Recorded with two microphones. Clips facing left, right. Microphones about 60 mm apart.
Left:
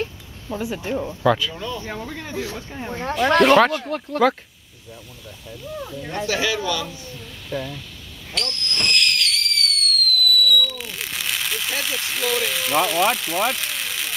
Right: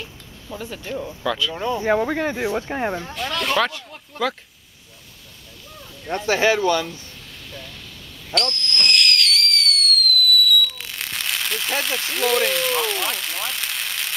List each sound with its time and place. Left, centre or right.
0.5 s speech: centre
1.5 s speech: right
1.9 s speech: right
3.3 s speech: left
5.5 s speech: centre
6.2 s speech: right
7.5 s speech: left
8.3 s fireworks: centre